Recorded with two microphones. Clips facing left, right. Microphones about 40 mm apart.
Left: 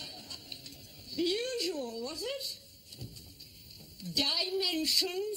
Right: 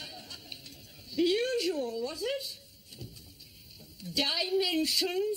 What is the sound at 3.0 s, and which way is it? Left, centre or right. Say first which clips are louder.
Vehicle: right 1 dB; centre.